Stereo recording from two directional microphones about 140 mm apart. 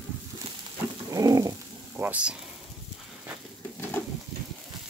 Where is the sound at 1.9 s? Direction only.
10° right (ahead or behind).